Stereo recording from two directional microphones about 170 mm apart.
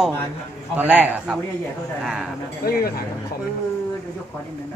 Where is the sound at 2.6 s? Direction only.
60° left (ahead or behind).